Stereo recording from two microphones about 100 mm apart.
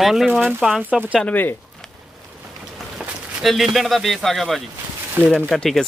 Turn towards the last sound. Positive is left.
turn(degrees=5)  # may be behind; listen again after turning